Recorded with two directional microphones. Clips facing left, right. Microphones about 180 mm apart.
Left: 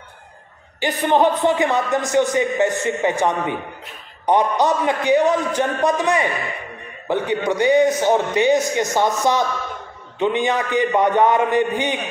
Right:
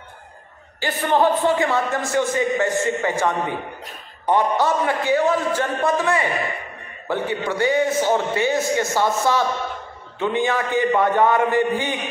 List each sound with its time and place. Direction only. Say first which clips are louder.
0.7 s a man's voice: left 2 dB; 20° left (ahead or behind)